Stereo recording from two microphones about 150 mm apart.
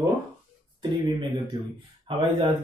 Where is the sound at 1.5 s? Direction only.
30° right (ahead or behind).